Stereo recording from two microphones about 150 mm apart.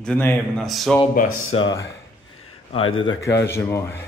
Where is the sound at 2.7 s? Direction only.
35° left (ahead or behind).